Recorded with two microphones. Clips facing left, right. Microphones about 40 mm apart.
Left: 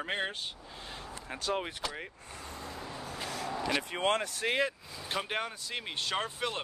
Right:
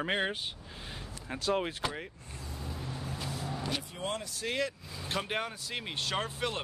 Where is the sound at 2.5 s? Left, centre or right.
Left.